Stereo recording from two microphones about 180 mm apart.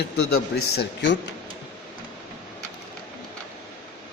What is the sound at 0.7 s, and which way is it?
Speech, 75° left (ahead or behind).